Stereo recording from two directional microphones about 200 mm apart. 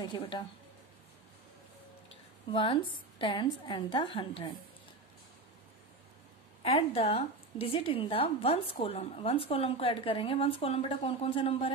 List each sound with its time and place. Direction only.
0.0 s a woman's voice: 25° left (ahead or behind)
2.5 s a woman's voice: 25° left (ahead or behind)
6.6 s a woman's voice: 30° left (ahead or behind)